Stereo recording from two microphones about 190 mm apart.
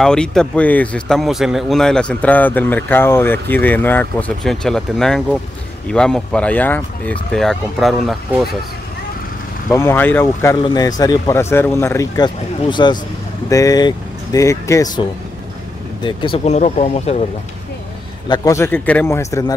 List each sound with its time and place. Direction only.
0.0 s speech: 5° left (ahead or behind)
9.7 s speech: 10° left (ahead or behind); by 17.2 s 35° left (ahead or behind)
18.3 s speech: 15° left (ahead or behind)